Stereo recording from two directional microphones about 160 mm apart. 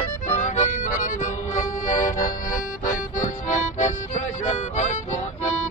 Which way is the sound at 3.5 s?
45° left (ahead or behind).